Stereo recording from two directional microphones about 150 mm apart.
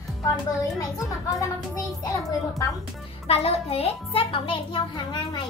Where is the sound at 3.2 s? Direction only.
40° left (ahead or behind).